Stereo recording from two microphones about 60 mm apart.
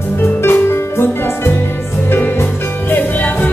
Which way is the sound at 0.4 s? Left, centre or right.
Left.